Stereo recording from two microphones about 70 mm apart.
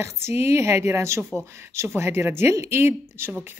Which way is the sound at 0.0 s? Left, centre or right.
Right.